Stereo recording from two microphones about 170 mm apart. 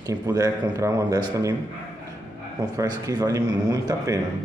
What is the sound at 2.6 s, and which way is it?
Speech, 20° right (ahead or behind).